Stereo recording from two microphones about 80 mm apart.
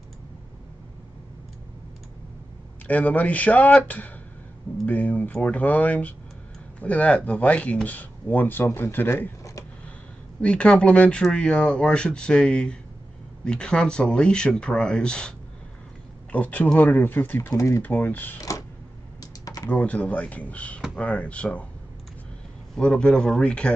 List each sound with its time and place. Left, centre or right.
2.9 s speech: centre
10.4 s speech: centre
17.5 s speech: left
17.8 s speech: left
19.4 s typing: left
19.7 s speech: centre
22.8 s speech: centre